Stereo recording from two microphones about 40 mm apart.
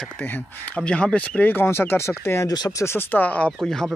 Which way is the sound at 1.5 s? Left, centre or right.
Left.